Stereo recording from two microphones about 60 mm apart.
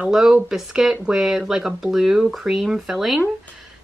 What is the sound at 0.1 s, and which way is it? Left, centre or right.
Speech, centre.